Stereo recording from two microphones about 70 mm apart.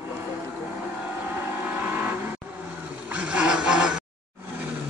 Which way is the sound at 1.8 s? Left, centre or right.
Right.